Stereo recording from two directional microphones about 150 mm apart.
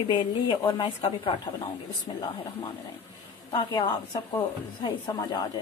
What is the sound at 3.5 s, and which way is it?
A woman's voice, 30° left (ahead or behind).